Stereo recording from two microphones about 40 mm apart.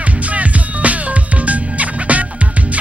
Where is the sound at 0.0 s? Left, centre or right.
Right.